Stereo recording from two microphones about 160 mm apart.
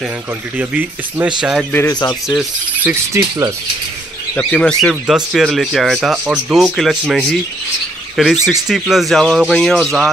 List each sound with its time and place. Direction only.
0.6 s speech: 10° right (ahead or behind)
1.7 s speech: 15° left (ahead or behind)
2.2 s speech: centre (ahead or behind)
2.9 s mechanisms: 15° right (ahead or behind)
4.4 s speech: 5° left (ahead or behind)